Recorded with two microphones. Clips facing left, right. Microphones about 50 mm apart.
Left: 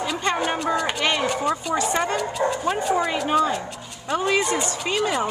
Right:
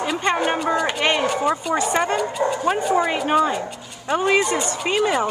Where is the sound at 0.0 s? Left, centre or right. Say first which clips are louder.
Right 3 dB; centre.